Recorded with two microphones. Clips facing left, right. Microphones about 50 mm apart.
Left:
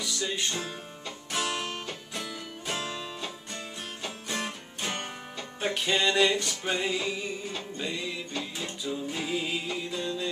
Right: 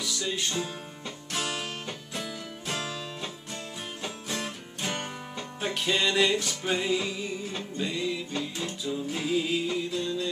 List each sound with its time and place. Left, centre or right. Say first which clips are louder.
0.0 s music: even; centre